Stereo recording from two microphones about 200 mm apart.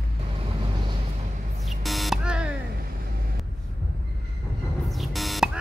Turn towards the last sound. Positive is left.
turn(degrees=0)  # may be behind; listen again after turning